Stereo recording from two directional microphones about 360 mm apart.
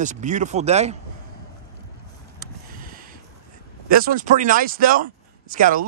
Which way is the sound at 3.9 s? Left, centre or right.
Right.